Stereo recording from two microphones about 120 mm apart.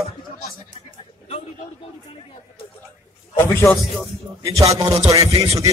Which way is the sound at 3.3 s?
20° left (ahead or behind).